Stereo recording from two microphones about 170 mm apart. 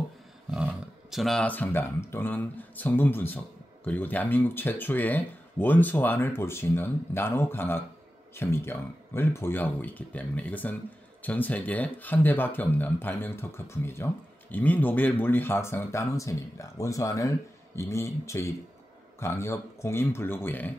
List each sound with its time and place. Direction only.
1.1 s speech: centre (ahead or behind)